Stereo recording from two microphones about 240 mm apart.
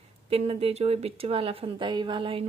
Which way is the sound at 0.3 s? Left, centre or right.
Right.